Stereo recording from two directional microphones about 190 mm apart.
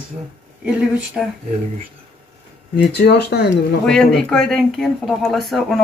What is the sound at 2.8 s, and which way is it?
Speech, 60° left (ahead or behind).